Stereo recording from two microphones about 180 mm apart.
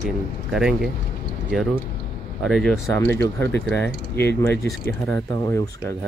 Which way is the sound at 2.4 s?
5° left (ahead or behind).